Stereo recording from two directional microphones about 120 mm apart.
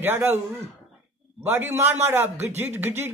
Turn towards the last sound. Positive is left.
turn(degrees=-20)  # may be behind; listen again after turning